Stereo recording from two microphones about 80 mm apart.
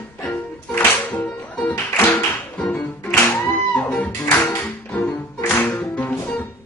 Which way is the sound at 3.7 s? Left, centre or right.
Centre.